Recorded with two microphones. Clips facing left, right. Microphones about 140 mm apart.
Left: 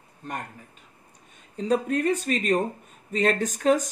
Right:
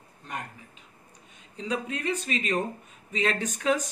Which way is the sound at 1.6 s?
45° left (ahead or behind).